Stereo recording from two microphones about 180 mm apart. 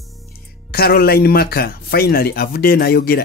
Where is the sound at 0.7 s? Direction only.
55° left (ahead or behind).